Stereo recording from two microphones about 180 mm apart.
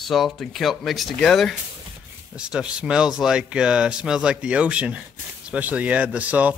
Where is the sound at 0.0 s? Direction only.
Centre (ahead or behind).